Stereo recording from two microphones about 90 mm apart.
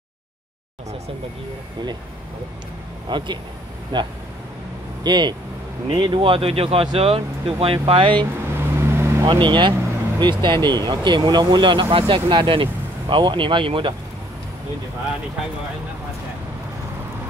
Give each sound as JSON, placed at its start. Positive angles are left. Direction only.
{"t": 3.1, "sound": "speech", "side_deg": -60}
{"t": 8.5, "sound": "vehicle", "side_deg": -25}
{"t": 9.3, "sound": "speech", "side_deg": -60}